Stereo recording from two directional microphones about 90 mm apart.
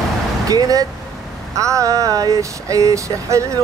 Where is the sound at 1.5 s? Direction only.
35° right (ahead or behind).